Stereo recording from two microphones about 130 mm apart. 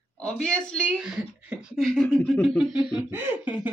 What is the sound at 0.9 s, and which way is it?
Speech, 5° right (ahead or behind).